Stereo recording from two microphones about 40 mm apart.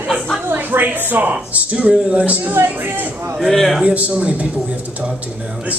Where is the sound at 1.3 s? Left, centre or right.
Right.